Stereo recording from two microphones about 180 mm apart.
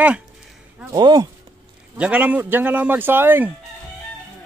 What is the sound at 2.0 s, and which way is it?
A man's voice, 10° right (ahead or behind).